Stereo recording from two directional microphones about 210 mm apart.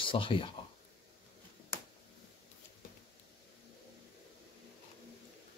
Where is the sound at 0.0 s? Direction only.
25° left (ahead or behind).